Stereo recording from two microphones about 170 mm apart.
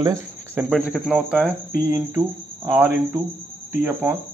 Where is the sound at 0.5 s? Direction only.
5° right (ahead or behind).